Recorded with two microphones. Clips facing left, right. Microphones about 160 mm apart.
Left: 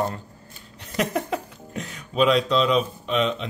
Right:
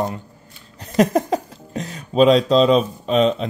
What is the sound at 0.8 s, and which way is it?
Speech, 35° right (ahead or behind).